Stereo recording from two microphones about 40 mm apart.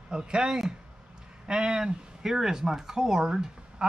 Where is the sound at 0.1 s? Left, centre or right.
Centre.